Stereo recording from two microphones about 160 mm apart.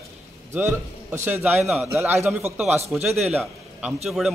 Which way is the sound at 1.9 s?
15° right (ahead or behind).